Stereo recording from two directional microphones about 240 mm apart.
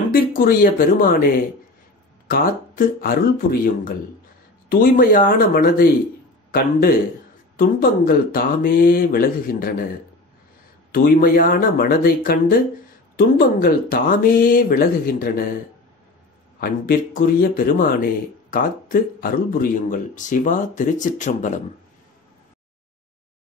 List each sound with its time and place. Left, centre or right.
0.1 s speech: left
4.6 s speech: left
10.9 s speech: left
16.5 s speech: left